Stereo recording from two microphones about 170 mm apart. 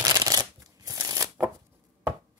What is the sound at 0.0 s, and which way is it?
Shuffling cards, 20° right (ahead or behind).